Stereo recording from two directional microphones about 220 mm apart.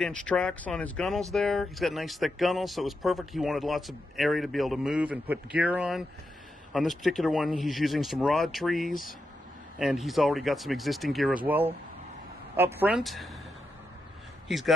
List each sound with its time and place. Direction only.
0.0 s speech: 5° left (ahead or behind)